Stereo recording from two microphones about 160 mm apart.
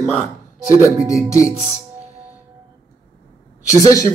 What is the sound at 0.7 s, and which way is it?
Speech, 20° left (ahead or behind).